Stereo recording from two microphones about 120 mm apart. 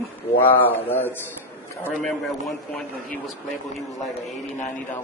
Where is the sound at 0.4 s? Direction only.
15° left (ahead or behind).